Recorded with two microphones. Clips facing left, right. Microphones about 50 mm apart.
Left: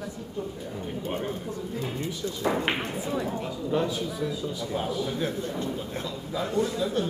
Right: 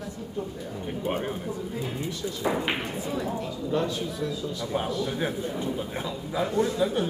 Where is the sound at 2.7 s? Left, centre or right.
Centre.